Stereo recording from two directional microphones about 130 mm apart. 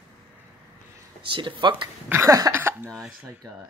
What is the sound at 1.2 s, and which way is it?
Speech, 40° right (ahead or behind).